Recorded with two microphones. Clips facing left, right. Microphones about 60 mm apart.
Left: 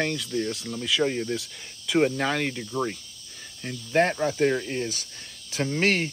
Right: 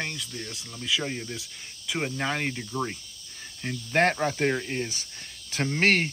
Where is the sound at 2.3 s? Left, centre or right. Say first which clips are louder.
Left 2 dB; centre.